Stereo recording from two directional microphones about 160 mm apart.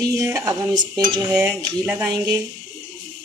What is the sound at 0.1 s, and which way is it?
Speech, 15° right (ahead or behind).